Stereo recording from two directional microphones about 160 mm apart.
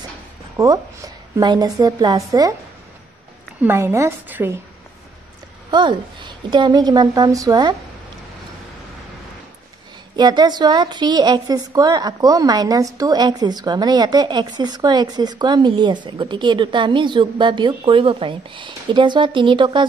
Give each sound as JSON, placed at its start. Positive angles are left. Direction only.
{"t": 0.6, "sound": "a woman's voice", "side_deg": -20}
{"t": 3.6, "sound": "a woman's voice", "side_deg": -15}
{"t": 5.7, "sound": "a woman's voice", "side_deg": -30}
{"t": 10.1, "sound": "a woman's voice", "side_deg": -25}